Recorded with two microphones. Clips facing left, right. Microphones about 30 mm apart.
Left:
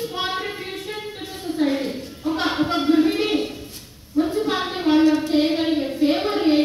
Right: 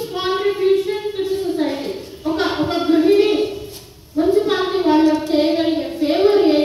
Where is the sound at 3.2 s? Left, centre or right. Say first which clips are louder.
Right 5 dB; right.